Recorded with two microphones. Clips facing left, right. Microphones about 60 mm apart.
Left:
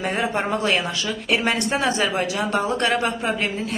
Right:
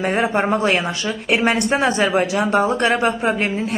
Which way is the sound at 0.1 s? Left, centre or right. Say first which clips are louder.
Right 5 dB; centre.